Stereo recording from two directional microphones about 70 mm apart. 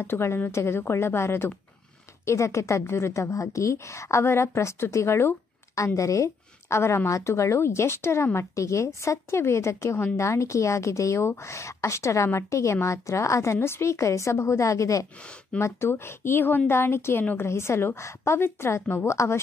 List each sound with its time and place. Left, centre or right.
0.0 s a woman's voice: left
15.6 s speech: left
17.2 s a woman's voice: left
17.5 s speech: left